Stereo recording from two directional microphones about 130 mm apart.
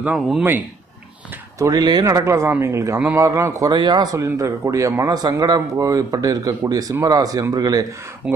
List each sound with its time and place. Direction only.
0.0 s a man's voice: 10° right (ahead or behind)
1.6 s a man's voice: 30° right (ahead or behind)